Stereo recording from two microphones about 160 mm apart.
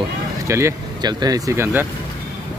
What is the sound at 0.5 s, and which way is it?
Speech, 15° right (ahead or behind).